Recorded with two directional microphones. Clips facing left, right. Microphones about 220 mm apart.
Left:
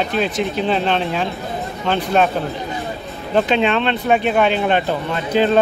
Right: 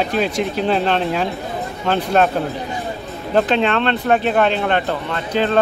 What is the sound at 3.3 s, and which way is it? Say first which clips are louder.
Speech: even; 5° left (ahead or behind).